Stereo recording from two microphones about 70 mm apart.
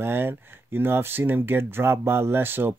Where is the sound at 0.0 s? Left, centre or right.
Right.